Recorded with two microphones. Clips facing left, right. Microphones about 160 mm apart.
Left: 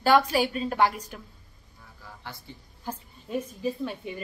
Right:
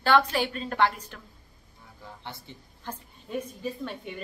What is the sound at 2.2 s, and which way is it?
Speech, 25° right (ahead or behind).